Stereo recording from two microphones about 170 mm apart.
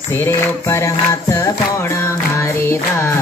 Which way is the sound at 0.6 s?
20° left (ahead or behind).